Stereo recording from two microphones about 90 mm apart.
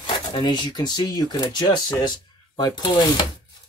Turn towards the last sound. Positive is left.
turn(degrees=50)  # may be behind; listen again after turning